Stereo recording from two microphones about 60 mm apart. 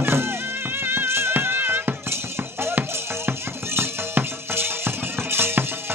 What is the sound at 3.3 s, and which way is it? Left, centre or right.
Music, right.